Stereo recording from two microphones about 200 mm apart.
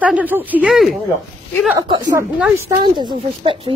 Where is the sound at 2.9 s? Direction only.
20° right (ahead or behind).